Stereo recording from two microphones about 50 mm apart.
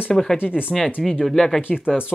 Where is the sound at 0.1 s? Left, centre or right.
Centre.